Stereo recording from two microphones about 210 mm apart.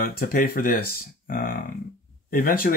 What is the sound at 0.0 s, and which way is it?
Speech, 45° left (ahead or behind).